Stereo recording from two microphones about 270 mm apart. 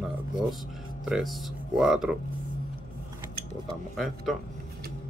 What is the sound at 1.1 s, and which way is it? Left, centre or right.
Speech, centre.